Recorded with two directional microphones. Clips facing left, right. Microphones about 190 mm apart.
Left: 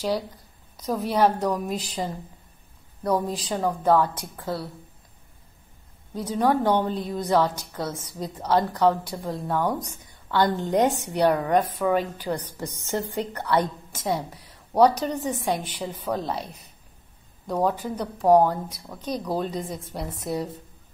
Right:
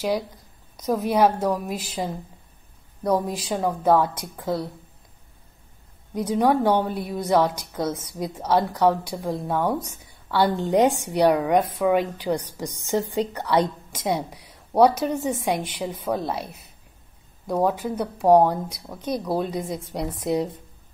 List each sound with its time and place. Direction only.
0.8 s a woman's voice: 10° right (ahead or behind)
6.1 s a woman's voice: 10° right (ahead or behind)
17.5 s a woman's voice: 10° right (ahead or behind)
20.2 s speech: 20° right (ahead or behind)